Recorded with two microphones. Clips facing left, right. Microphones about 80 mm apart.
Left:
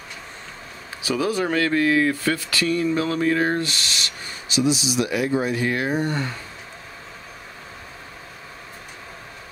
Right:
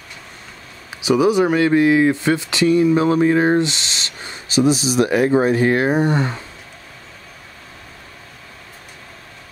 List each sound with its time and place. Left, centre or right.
1.0 s speech: centre
4.5 s speech: right
5.9 s speech: right